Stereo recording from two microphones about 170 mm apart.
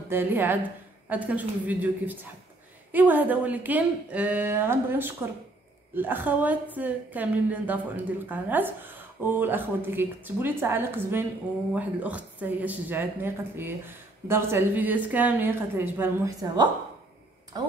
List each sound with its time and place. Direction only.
0.1 s a woman's voice: 10° right (ahead or behind)